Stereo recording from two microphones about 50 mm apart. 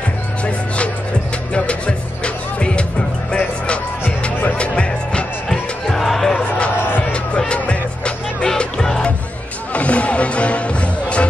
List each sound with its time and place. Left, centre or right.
1.5 s music: left
5.5 s music: centre
7.1 s music: left
9.7 s music: left